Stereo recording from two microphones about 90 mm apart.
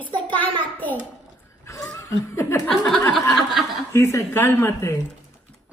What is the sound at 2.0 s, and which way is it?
Speech, 30° left (ahead or behind).